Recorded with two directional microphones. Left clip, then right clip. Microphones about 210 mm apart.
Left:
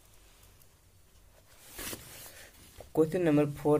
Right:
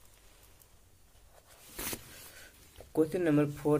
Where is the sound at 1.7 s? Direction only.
15° right (ahead or behind).